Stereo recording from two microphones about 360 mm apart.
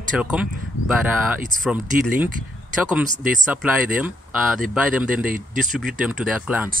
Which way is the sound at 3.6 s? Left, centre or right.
Centre.